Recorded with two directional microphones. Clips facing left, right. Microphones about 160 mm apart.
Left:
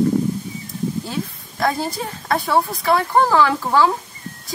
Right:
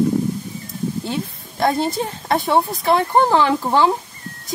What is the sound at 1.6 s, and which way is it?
A woman's voice, 25° right (ahead or behind).